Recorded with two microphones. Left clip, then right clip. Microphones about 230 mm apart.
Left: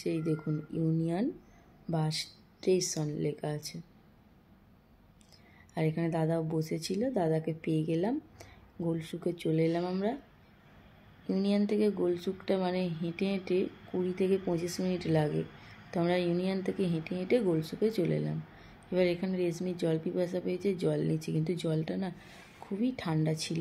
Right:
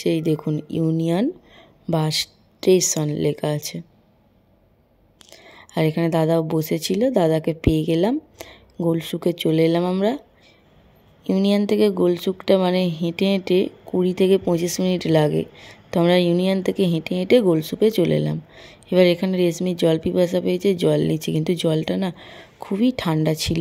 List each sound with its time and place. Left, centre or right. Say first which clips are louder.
0.0 s speech: right 12 dB; right
5.5 s speech: right 12 dB; right
11.2 s speech: right 11 dB; right